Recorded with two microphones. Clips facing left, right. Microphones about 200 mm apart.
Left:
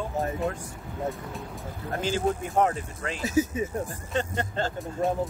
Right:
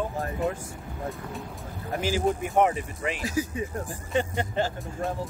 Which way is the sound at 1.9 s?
10° right (ahead or behind).